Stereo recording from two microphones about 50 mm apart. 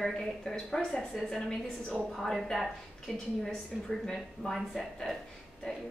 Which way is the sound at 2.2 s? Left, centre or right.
Centre.